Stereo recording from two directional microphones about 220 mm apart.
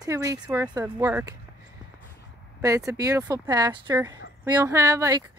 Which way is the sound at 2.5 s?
15° right (ahead or behind).